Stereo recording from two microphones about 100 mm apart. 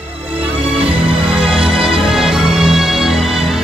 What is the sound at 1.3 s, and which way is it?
Music, 5° right (ahead or behind).